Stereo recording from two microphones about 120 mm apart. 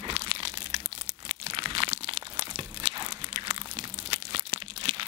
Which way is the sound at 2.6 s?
40° right (ahead or behind).